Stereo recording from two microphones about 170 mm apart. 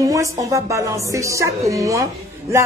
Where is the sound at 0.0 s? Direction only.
20° right (ahead or behind).